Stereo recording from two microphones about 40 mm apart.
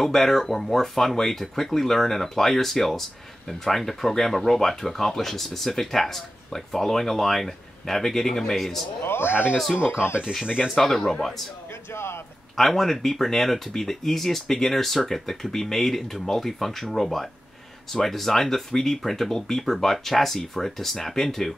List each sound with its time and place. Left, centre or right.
0.0 s speech: centre
9.0 s speech: left
10.4 s speech: right
10.7 s speech: centre
11.9 s speech: left
12.5 s speech: centre